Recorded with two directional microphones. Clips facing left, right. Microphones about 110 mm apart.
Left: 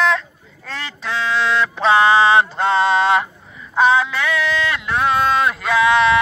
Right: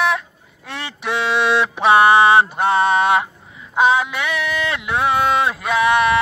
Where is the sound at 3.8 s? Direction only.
15° right (ahead or behind).